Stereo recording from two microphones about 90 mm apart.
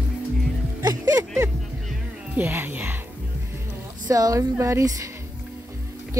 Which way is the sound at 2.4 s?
25° right (ahead or behind).